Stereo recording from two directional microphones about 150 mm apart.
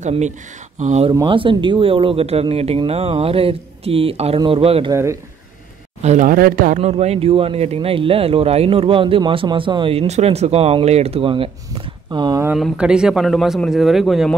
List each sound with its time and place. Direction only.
0.7 s speech: 50° right (ahead or behind)
1.2 s speech: 35° right (ahead or behind)
4.9 s speech: 20° right (ahead or behind)
6.0 s speech: 65° right (ahead or behind)
6.8 s speech: 45° right (ahead or behind)
12.5 s speech: 5° right (ahead or behind)